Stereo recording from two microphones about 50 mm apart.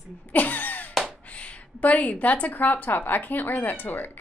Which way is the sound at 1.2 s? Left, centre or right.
Left.